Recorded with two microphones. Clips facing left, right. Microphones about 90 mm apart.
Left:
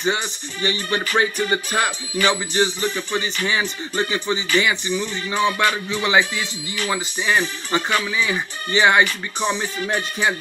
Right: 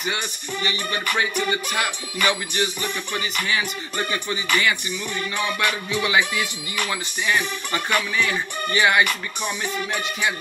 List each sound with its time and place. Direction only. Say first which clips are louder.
0.0 s music: left 5 dB; 30° left (ahead or behind)